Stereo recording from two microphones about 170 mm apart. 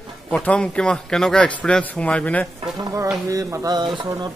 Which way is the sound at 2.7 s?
20° right (ahead or behind).